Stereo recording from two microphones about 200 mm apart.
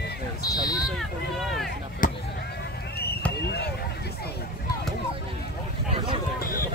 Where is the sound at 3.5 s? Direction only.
55° left (ahead or behind).